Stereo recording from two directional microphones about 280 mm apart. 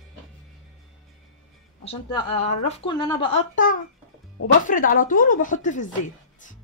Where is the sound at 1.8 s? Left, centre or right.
Left.